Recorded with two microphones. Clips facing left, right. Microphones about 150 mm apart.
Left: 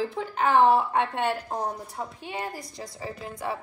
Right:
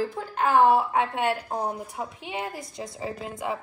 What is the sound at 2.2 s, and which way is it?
Speech, 25° right (ahead or behind).